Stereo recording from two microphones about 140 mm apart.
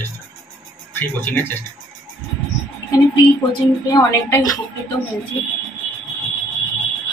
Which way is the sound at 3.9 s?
25° left (ahead or behind).